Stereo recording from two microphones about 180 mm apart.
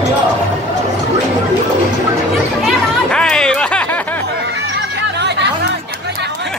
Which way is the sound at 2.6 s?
5° left (ahead or behind).